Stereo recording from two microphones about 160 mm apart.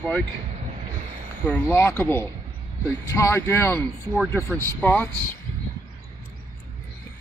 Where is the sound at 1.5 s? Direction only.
15° left (ahead or behind).